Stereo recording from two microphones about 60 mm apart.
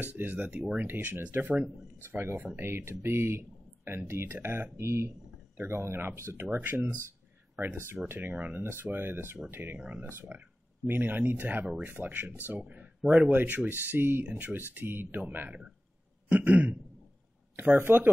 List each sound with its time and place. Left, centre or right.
0.0 s speech: right
2.3 s speech: right
2.6 s speech: right
4.7 s speech: right
7.1 s a sound: right
8.1 s speech: right
12.7 s a sound: right
13.2 s speech: right
16.3 s throat clearing: right
17.6 s speech: right